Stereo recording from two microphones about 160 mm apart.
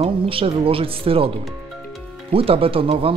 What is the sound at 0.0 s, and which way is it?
Speech, 35° right (ahead or behind).